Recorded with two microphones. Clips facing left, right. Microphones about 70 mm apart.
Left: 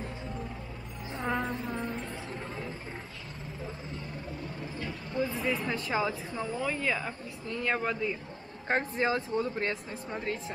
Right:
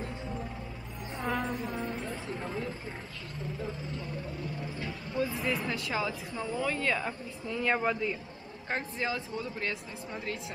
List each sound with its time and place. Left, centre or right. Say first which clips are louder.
1.4 s music: even; centre
2.3 s a sound: right 3 dB; centre
4.8 s a sound: left 1 dB; centre
5.8 s speech: left 2 dB; left
6.3 s speech: even; centre
8.6 s speech: left 5 dB; left